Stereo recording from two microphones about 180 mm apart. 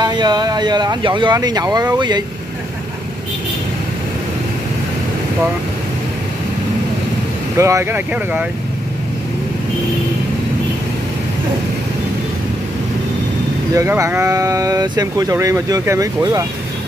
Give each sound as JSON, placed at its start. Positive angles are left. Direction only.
{"t": 0.0, "sound": "speech", "side_deg": -25}
{"t": 7.5, "sound": "speech", "side_deg": -15}
{"t": 13.7, "sound": "speech", "side_deg": -15}